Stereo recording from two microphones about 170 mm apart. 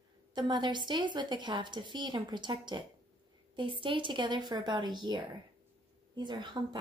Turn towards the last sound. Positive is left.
turn(degrees=-25)  # may be behind; listen again after turning